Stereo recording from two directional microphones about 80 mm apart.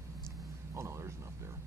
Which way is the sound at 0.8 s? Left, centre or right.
Right.